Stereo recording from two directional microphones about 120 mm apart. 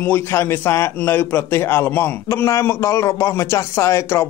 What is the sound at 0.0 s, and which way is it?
A man's voice, 15° left (ahead or behind).